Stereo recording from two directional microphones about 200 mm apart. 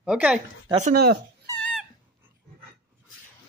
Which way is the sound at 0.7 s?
30° right (ahead or behind).